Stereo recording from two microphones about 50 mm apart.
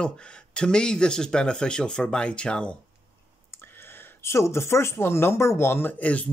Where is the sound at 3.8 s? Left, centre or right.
Left.